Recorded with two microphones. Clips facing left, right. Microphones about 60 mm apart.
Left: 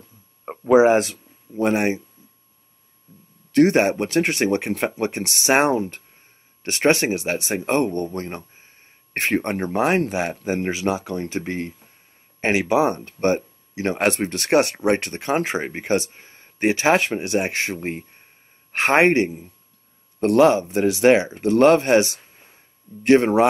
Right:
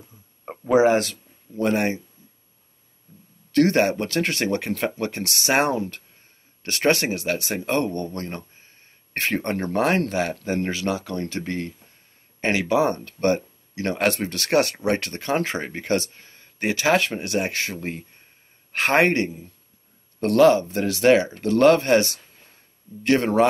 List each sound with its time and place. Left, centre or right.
0.5 s speech: centre
3.5 s speech: centre